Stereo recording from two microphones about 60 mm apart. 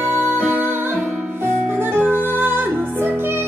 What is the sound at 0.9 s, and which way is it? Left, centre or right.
Music, centre.